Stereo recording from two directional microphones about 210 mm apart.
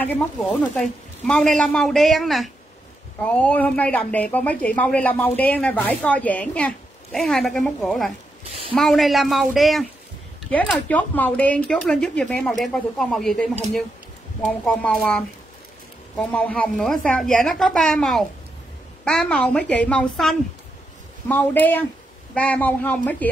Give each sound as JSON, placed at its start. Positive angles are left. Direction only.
{"t": 0.0, "sound": "speech", "side_deg": 5}